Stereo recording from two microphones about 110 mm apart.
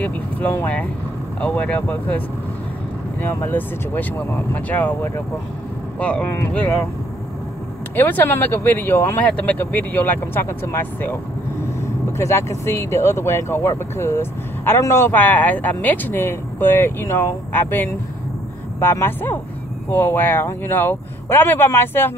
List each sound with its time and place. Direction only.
0.0 s speech: 15° left (ahead or behind)
3.4 s speech: 15° left (ahead or behind)
7.9 s speech: 20° left (ahead or behind)
12.2 s speech: 25° left (ahead or behind)